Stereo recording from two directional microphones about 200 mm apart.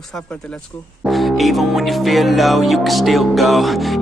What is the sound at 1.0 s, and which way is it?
Music, centre (ahead or behind).